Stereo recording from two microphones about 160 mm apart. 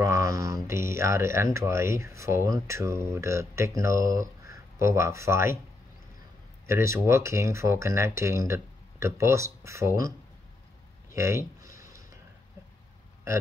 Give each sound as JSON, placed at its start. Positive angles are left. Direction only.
{"t": 0.0, "sound": "mantra", "side_deg": -20}
{"t": 0.7, "sound": "speech", "side_deg": -15}
{"t": 6.7, "sound": "speech", "side_deg": -15}